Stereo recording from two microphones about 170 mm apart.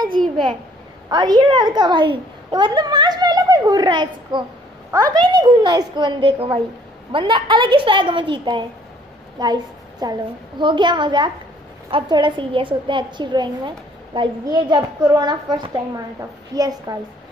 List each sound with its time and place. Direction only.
1.1 s a woman's voice: 25° right (ahead or behind)